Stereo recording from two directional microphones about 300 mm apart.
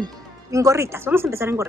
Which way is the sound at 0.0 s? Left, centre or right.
Centre.